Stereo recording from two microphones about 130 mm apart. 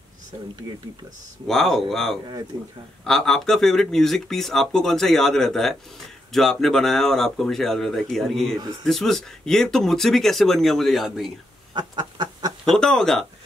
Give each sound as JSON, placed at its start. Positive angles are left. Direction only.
{"t": 1.5, "sound": "speech", "side_deg": 0}
{"t": 2.5, "sound": "a man's voice", "side_deg": -30}
{"t": 3.1, "sound": "speech", "side_deg": 0}
{"t": 11.7, "sound": "duck", "side_deg": -35}
{"t": 12.6, "sound": "speech", "side_deg": 5}